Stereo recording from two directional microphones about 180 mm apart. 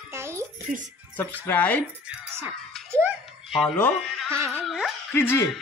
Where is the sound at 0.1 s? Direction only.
15° right (ahead or behind).